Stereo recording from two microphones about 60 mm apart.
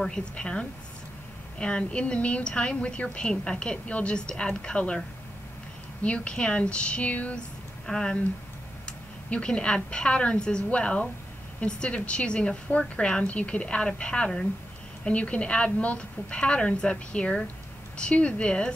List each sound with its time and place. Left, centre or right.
0.0 s a woman's voice: centre
6.0 s speech: centre
7.8 s speech: centre
9.3 s a woman's voice: centre